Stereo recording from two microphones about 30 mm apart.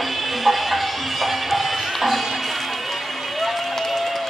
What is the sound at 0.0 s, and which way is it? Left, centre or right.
Music, centre.